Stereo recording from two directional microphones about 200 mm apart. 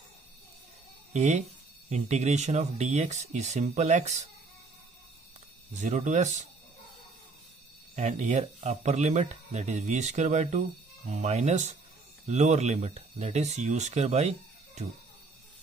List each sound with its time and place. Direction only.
1.1 s speech: 35° right (ahead or behind)
5.8 s speech: 35° right (ahead or behind)
7.9 s speech: 35° right (ahead or behind)